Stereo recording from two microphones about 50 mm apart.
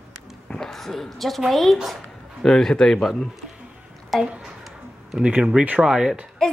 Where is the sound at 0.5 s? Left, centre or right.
Centre.